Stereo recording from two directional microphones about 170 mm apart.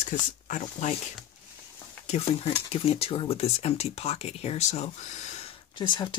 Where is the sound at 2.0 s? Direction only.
35° left (ahead or behind).